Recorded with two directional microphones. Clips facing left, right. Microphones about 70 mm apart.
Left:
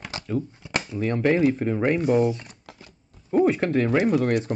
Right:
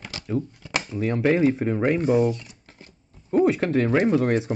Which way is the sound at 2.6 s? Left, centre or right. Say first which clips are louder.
Left 3 dB; left.